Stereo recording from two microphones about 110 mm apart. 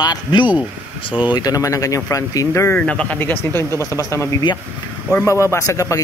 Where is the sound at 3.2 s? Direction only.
20° left (ahead or behind).